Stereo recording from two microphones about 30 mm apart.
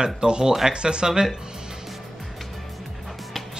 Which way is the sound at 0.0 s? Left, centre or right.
Right.